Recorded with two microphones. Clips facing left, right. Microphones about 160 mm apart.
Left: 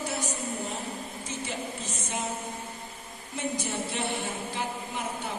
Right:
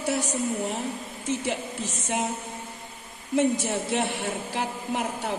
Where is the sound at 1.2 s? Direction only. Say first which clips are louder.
Right 8 dB; 75° right (ahead or behind).